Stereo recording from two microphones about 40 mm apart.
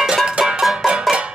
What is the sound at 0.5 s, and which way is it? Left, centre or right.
Music, centre.